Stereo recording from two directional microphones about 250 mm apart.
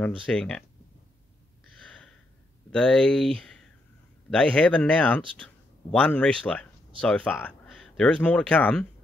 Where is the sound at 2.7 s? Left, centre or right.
Centre.